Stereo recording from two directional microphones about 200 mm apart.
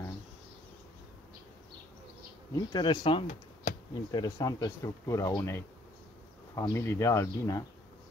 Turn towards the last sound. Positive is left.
turn(degrees=15)  # may be behind; listen again after turning